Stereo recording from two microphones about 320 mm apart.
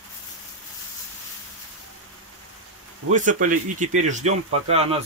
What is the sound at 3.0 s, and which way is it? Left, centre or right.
Speech, right.